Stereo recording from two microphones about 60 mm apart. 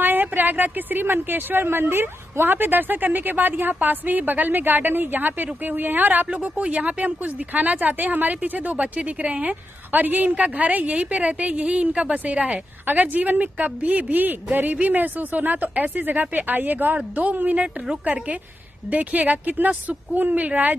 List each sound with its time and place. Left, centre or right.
0.0 s a woman's voice: right